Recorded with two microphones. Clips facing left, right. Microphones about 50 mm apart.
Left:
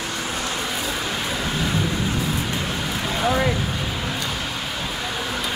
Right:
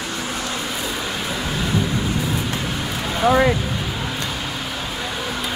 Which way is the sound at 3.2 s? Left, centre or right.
Right.